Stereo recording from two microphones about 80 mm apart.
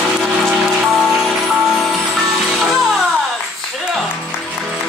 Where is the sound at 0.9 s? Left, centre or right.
Centre.